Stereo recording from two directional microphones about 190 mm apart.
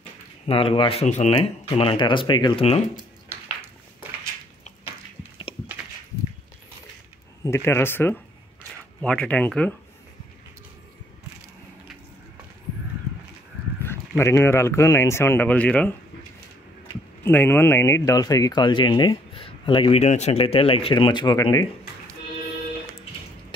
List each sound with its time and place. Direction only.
0.5 s speech: 30° left (ahead or behind)
7.4 s speech: 15° left (ahead or behind)
13.8 s speech: 15° left (ahead or behind)
17.2 s speech: 10° left (ahead or behind)